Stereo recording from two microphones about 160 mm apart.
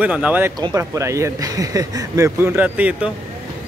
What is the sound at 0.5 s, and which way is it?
Speech, 20° right (ahead or behind).